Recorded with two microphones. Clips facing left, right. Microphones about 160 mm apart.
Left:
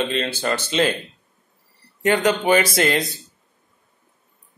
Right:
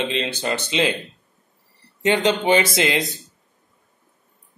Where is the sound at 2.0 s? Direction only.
20° right (ahead or behind).